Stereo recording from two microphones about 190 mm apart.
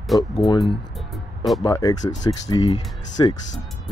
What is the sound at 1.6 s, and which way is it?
Speech, 20° left (ahead or behind).